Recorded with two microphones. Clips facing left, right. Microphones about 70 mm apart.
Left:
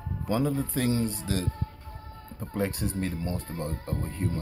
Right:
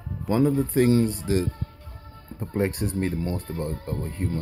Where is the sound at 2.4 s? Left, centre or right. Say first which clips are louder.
Right 4 dB; right.